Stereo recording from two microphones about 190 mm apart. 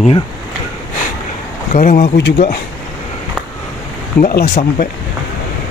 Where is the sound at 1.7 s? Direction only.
35° left (ahead or behind).